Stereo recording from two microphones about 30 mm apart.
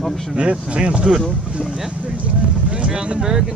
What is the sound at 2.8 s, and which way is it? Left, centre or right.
Speech, right.